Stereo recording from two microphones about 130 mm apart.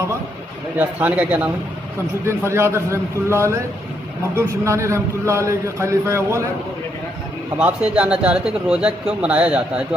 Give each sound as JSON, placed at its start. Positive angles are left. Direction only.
{"t": 0.7, "sound": "a man's voice", "side_deg": -15}
{"t": 7.5, "sound": "a man's voice", "side_deg": -10}